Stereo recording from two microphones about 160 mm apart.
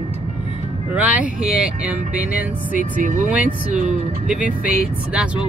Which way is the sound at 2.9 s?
55° right (ahead or behind).